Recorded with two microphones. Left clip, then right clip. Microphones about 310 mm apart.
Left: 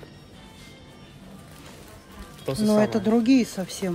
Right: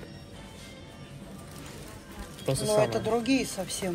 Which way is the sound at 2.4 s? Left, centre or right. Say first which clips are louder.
Left 3 dB; centre.